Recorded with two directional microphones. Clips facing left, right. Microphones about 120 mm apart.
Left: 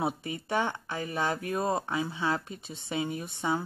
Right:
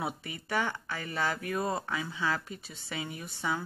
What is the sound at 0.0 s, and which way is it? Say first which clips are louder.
Speech: left 5 dB; 25° left (ahead or behind).